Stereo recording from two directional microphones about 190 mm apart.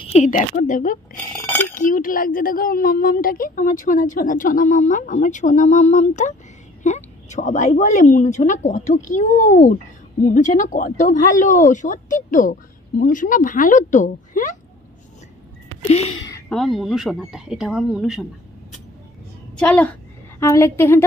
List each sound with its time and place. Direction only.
0.0 s speech: 35° left (ahead or behind)
1.1 s a sound: 10° left (ahead or behind)
1.7 s a woman's voice: 45° left (ahead or behind)
15.9 s a woman's voice: 35° left (ahead or behind)
16.4 s speech: centre (ahead or behind)
19.6 s a woman's voice: 10° left (ahead or behind)